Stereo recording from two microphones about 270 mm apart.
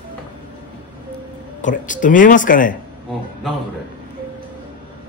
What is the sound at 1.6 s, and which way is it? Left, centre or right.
Speech, left.